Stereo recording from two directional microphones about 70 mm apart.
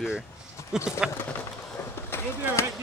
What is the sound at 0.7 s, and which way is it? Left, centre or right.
Speech, centre.